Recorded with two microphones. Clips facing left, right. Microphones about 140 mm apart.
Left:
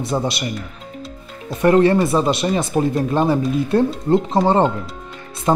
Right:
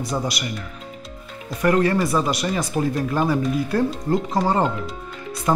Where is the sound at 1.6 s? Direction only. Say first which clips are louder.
Left 5 dB; 25° left (ahead or behind).